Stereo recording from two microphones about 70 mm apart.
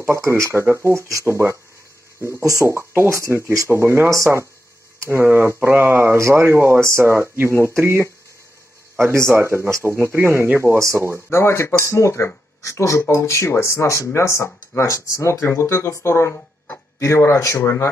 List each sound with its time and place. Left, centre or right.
0.0 s speech: right
2.6 s speech: right
5.0 s speech: right
6.1 s speech: right
11.2 s speech: left
16.3 s a sound: left
17.0 s speech: left